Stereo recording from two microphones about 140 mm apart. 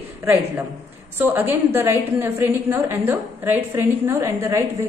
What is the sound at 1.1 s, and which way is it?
A woman's voice, 15° right (ahead or behind).